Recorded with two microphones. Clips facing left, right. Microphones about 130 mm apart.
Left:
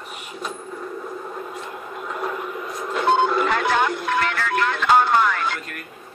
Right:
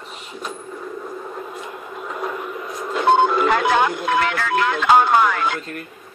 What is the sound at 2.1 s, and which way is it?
Radio, centre (ahead or behind).